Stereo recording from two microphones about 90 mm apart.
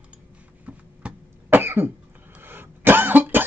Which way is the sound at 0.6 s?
15° right (ahead or behind).